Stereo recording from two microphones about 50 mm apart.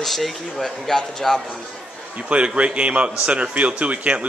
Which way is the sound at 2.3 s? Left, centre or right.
Right.